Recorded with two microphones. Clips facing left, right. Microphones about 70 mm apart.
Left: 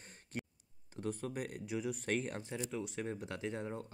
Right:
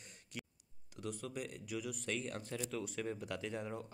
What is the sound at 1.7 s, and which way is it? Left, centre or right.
Speech, left.